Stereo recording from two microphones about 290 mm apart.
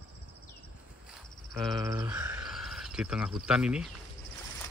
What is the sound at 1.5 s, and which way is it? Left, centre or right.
Cricket, centre.